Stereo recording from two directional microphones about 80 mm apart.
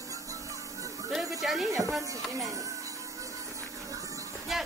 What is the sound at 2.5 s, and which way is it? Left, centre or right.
Music, right.